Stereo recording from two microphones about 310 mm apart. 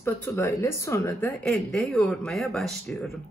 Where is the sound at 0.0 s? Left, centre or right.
Centre.